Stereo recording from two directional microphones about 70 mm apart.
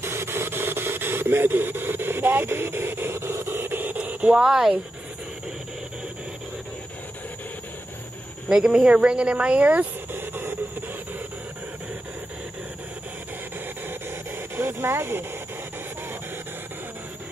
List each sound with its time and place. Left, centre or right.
0.0 s a sound: right; by 4.4 s centre
4.4 s speech: centre
8.5 s speech: centre; by 10.5 s right
13.8 s vehicle: right